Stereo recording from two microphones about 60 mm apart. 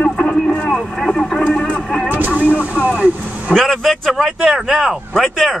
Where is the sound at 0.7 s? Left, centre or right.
Centre; by 2.9 s left.